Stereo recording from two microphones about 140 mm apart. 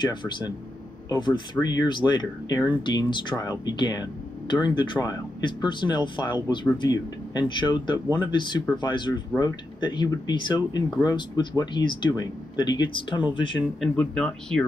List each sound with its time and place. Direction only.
0.0 s speech: 30° left (ahead or behind)
13.7 s speech: 5° left (ahead or behind)